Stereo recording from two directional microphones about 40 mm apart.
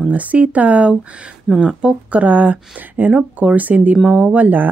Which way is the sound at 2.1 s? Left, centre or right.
Right.